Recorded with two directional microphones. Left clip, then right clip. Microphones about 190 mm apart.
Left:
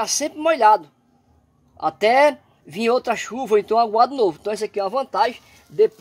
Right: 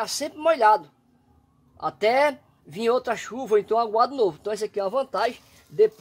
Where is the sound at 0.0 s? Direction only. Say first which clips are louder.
Left 3 dB; 35° left (ahead or behind).